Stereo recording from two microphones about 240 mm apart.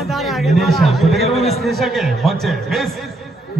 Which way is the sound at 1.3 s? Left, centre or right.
Left.